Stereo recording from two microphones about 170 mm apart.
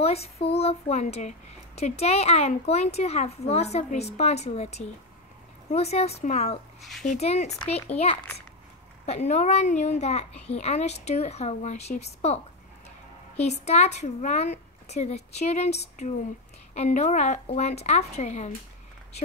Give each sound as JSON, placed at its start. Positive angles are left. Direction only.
{"t": 0.0, "sound": "a child's voice", "side_deg": 35}
{"t": 6.8, "sound": "speech", "side_deg": 0}
{"t": 7.1, "sound": "a child's voice", "side_deg": 40}
{"t": 7.9, "sound": "a child's voice", "side_deg": 10}
{"t": 9.0, "sound": "a child's voice", "side_deg": 40}
{"t": 13.4, "sound": "a child's voice", "side_deg": 40}